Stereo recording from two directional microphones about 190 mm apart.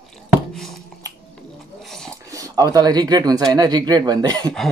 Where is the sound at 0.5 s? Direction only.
Centre (ahead or behind).